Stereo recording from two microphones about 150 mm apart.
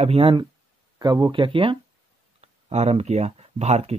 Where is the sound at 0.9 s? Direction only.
25° right (ahead or behind).